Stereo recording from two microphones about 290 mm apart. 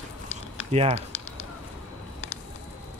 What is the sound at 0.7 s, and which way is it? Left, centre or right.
Speech, right.